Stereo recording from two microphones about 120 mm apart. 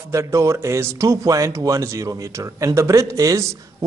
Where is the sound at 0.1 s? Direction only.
25° right (ahead or behind).